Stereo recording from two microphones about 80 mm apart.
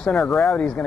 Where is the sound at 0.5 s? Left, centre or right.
Centre.